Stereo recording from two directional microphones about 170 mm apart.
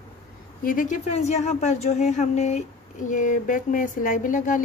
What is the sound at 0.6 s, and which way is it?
Speech, 50° left (ahead or behind).